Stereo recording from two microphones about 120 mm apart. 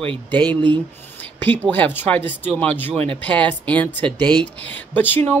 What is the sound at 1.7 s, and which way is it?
Speech, 15° left (ahead or behind).